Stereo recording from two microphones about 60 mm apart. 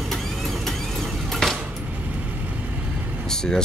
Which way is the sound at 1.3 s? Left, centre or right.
Centre.